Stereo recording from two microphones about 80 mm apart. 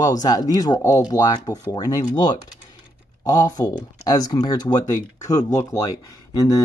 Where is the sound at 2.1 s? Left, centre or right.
Left.